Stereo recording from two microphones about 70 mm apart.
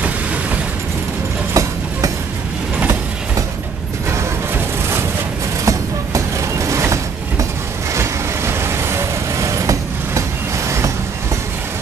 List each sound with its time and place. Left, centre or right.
1.5 s train: right
5.7 s train: right
7.9 s vehicle: right